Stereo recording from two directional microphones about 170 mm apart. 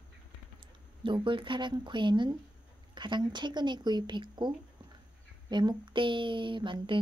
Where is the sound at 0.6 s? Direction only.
30° right (ahead or behind).